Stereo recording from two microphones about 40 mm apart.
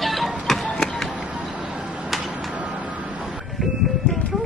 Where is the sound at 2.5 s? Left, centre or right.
Right.